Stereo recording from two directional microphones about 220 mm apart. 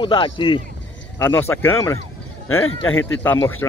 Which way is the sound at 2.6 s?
65° left (ahead or behind).